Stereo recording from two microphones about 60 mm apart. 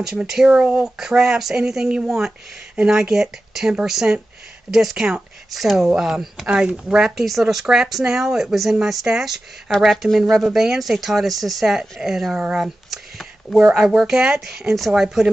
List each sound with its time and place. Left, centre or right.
0.0 s speech: centre
0.8 s speech: centre
7.2 s speech: centre
7.6 s speech: centre
12.5 s a sound: centre
13.7 s speech: centre